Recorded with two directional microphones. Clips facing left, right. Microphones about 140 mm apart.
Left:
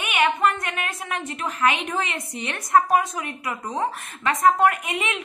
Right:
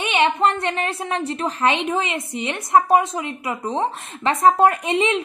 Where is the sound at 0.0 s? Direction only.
25° right (ahead or behind).